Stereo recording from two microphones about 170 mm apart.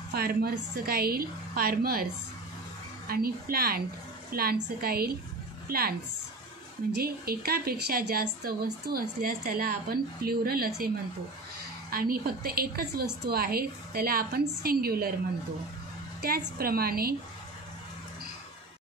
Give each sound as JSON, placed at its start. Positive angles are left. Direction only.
{"t": 0.1, "sound": "speech", "side_deg": -65}
{"t": 3.1, "sound": "speech", "side_deg": -60}
{"t": 7.0, "sound": "speech", "side_deg": -65}
{"t": 11.9, "sound": "speech", "side_deg": -60}
{"t": 16.2, "sound": "speech", "side_deg": -60}